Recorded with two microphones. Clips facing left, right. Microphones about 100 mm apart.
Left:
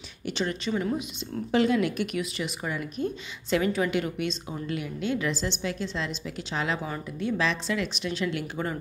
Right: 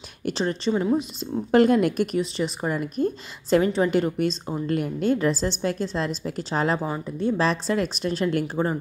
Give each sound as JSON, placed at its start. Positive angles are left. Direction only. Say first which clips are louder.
{"t": 0.2, "sound": "speech", "louder": "right 5 dB", "side_deg": -35}
{"t": 1.5, "sound": "a woman's voice", "louder": "right 6 dB", "side_deg": -50}
{"t": 2.1, "sound": "a woman's voice", "louder": "right 6 dB", "side_deg": -35}